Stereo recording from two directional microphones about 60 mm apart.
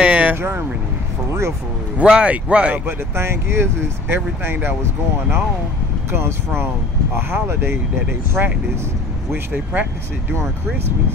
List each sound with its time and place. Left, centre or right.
0.0 s vehicle: centre
0.4 s speech: right
2.0 s speech: centre
2.9 s speech: right
6.1 s speech: right
8.4 s speech: right